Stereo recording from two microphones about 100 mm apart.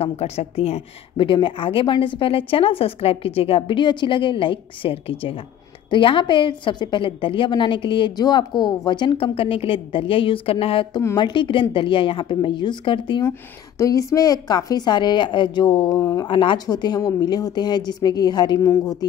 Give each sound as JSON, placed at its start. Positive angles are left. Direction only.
{"t": 0.0, "sound": "a woman's voice", "side_deg": 85}
{"t": 5.9, "sound": "a woman's voice", "side_deg": 55}
{"t": 11.1, "sound": "a woman's voice", "side_deg": 50}
{"t": 13.2, "sound": "a woman's voice", "side_deg": 30}
{"t": 15.9, "sound": "speech", "side_deg": 35}
{"t": 16.3, "sound": "a woman's voice", "side_deg": 55}
{"t": 16.6, "sound": "a woman's voice", "side_deg": 45}
{"t": 18.6, "sound": "speech", "side_deg": 35}